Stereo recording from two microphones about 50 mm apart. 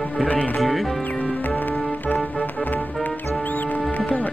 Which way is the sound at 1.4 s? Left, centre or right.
Left.